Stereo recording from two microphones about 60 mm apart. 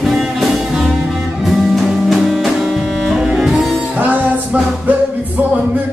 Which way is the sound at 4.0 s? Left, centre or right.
Right.